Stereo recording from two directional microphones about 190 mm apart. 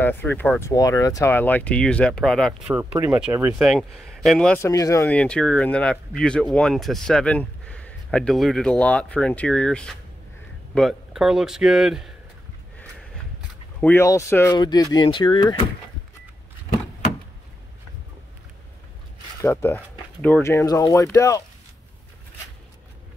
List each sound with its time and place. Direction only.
0.0 s speech: 10° left (ahead or behind)
2.8 s speech: 10° right (ahead or behind)
4.6 s speech: 15° left (ahead or behind); by 12.1 s centre (ahead or behind)
13.7 s speech: 10° left (ahead or behind)
19.4 s speech: 15° left (ahead or behind)